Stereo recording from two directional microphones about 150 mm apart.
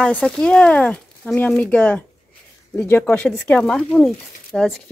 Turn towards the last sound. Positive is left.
turn(degrees=5)  # may be behind; listen again after turning